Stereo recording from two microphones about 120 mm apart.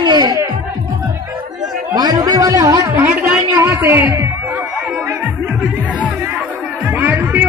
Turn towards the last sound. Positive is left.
turn(degrees=-15)  # may be behind; listen again after turning